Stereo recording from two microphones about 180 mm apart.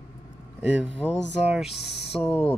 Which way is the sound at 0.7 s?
5° right (ahead or behind).